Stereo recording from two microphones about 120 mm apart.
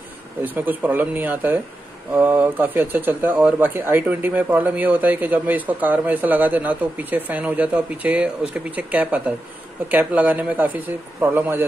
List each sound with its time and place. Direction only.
0.4 s a man's voice: 15° right (ahead or behind)